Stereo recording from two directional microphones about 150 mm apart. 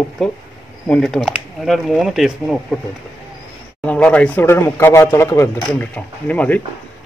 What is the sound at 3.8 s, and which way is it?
Speech, 10° left (ahead or behind).